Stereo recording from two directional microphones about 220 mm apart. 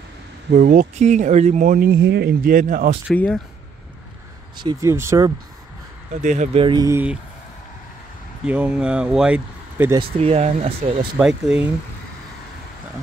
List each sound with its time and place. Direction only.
0.5 s speech: 35° right (ahead or behind)
3.1 s speech: 5° left (ahead or behind)
4.6 s speech: 20° right (ahead or behind)
6.2 s speech: 35° right (ahead or behind); by 7.2 s 10° right (ahead or behind)
8.5 s speech: 5° right (ahead or behind)
9.9 s speech: 25° right (ahead or behind)
11.1 s speech: 5° right (ahead or behind)